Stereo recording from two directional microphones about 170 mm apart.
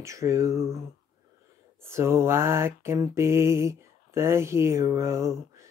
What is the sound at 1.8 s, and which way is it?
Mantra, 15° right (ahead or behind).